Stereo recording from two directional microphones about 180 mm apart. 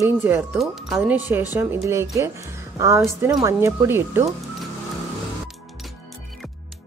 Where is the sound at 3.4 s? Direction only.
15° right (ahead or behind).